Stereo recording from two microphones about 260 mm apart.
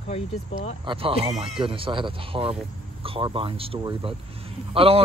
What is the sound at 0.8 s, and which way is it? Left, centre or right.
Speech, centre.